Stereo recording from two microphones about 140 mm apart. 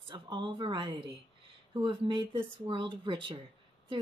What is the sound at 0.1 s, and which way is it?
A woman's voice, 35° right (ahead or behind).